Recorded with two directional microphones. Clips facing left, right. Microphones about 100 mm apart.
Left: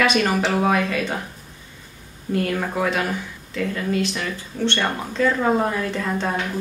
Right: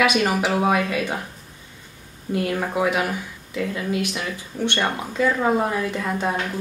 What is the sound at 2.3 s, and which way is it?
A woman's voice, 15° right (ahead or behind).